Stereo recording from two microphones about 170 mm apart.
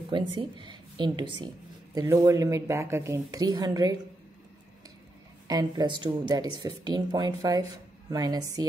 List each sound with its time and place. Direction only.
0.3 s speech: 30° right (ahead or behind)
5.5 s speech: 25° right (ahead or behind)